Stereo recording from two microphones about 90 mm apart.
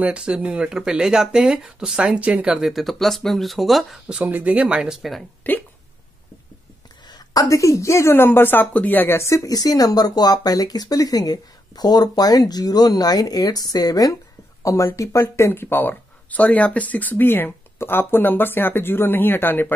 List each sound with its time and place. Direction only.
0.0 s speech: 10° right (ahead or behind)
2.6 s speech: centre (ahead or behind)
4.2 s speech: 20° right (ahead or behind)
5.4 s speech: 20° left (ahead or behind)
7.1 s a woman's voice: 45° left (ahead or behind); by 19.7 s 25° left (ahead or behind)